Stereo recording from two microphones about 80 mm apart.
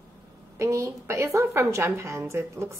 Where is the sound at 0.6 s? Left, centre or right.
Right.